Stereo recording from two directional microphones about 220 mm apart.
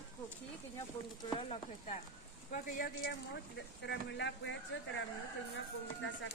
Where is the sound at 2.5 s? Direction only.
40° left (ahead or behind).